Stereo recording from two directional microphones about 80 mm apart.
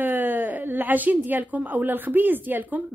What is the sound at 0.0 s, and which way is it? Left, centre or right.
A woman's voice, right.